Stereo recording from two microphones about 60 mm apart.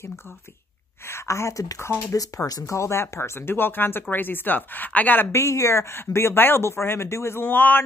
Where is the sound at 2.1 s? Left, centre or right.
Left.